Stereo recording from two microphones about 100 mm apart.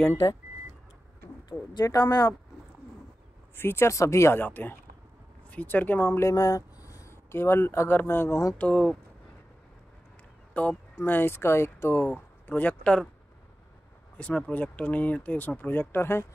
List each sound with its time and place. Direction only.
1.5 s speech: 40° left (ahead or behind)
2.0 s speech: 20° left (ahead or behind)
3.5 s speech: 25° left (ahead or behind)
8.5 s speech: 10° left (ahead or behind)
10.6 s speech: 15° left (ahead or behind)
14.1 s speech: 10° left (ahead or behind)